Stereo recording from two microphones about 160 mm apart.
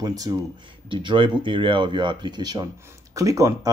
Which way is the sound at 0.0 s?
20° right (ahead or behind).